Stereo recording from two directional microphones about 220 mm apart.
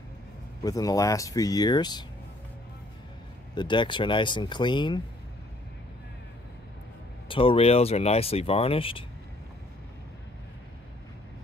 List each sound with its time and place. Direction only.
0.7 s speech: 15° left (ahead or behind)
3.5 s speech: 20° left (ahead or behind)
7.2 s speech: 25° left (ahead or behind)